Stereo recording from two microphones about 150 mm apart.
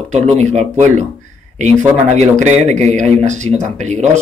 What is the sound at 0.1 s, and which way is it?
Speech, 50° right (ahead or behind).